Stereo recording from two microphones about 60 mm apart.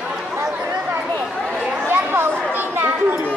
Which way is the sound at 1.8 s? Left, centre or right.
Right.